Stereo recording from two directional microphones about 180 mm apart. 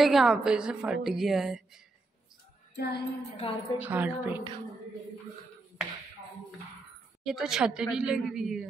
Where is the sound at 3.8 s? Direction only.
10° right (ahead or behind).